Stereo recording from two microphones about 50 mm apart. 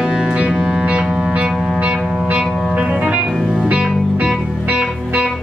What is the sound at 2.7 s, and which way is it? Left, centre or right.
Music, right.